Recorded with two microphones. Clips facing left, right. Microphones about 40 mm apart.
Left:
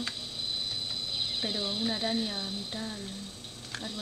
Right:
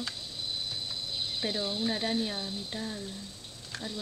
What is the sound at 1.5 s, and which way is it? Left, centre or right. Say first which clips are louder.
Speech: right 1 dB; centre.